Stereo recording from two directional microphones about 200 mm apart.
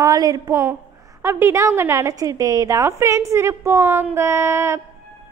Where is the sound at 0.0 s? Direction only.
20° right (ahead or behind).